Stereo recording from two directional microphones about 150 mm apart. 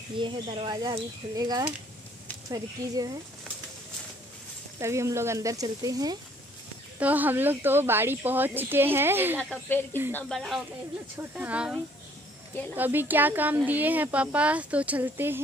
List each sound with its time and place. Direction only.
0.2 s speech: 35° right (ahead or behind)
4.7 s speech: 20° right (ahead or behind)
7.0 s speech: 10° right (ahead or behind)
9.4 s speech: 10° left (ahead or behind)
10.2 s speech: centre (ahead or behind)